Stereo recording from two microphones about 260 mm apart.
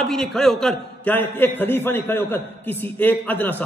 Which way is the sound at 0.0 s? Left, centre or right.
Centre.